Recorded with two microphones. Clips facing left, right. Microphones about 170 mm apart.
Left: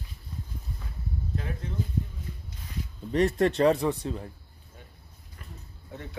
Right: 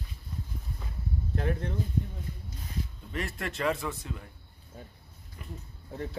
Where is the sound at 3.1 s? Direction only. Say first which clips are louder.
Left 14 dB; 35° left (ahead or behind).